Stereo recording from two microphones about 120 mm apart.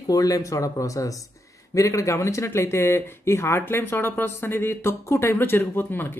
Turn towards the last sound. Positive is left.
turn(degrees=15)  # may be behind; listen again after turning